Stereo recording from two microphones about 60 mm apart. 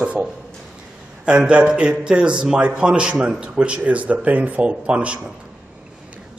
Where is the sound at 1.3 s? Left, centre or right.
Centre.